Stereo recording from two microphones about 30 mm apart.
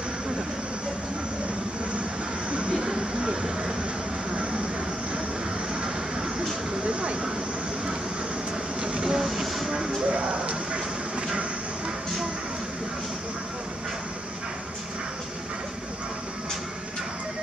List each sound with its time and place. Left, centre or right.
2.7 s vehicle: right
4.3 s vehicle: right
6.9 s vehicle: right
8.8 s train: right
10.0 s a sound: right